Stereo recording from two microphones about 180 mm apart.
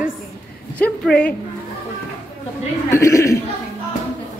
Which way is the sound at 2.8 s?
15° left (ahead or behind).